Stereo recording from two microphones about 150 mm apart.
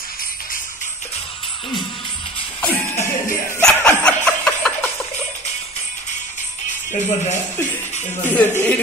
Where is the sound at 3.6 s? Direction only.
10° left (ahead or behind).